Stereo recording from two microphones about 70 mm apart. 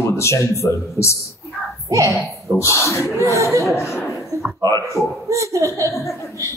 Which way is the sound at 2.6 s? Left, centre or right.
Left.